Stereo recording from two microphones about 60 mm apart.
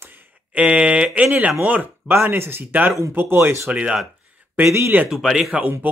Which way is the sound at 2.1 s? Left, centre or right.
Right.